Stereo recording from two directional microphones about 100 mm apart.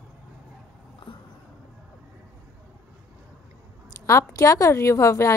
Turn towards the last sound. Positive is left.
turn(degrees=30)  # may be behind; listen again after turning